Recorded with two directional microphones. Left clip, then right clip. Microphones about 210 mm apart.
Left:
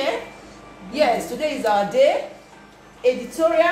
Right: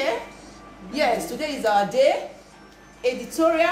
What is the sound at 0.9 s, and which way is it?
A woman's voice, 25° right (ahead or behind).